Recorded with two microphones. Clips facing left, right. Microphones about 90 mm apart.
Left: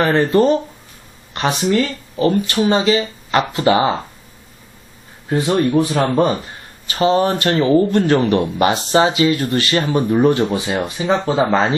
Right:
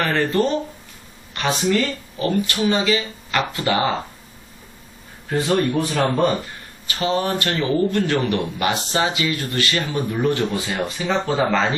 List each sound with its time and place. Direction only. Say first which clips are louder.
0.0 s speech: left 6 dB; 20° left (ahead or behind)
5.3 s speech: left 4 dB; 20° left (ahead or behind)